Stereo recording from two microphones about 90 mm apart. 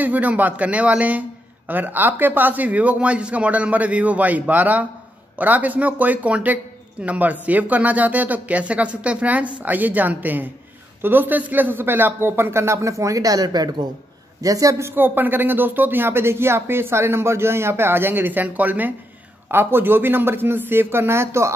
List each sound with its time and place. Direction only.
0.0 s speech: 20° right (ahead or behind)